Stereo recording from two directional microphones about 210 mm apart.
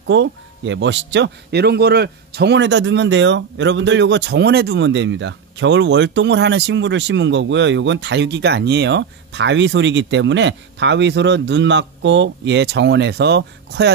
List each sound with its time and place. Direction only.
0.0 s speech: 60° right (ahead or behind)